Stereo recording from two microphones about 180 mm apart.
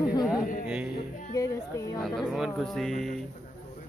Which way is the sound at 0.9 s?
45° left (ahead or behind).